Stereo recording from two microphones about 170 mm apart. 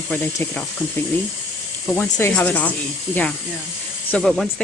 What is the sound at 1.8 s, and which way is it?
Speech, 10° left (ahead or behind).